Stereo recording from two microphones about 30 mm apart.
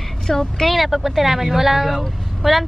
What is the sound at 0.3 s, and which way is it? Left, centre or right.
Speech, centre.